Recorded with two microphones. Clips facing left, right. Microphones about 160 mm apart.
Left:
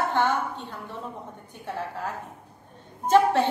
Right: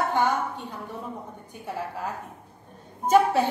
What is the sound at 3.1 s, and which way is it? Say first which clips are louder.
Speech: even; 10° right (ahead or behind).